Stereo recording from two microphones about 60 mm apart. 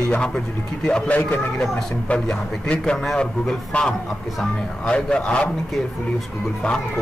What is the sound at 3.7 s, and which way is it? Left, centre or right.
A man's voice, left.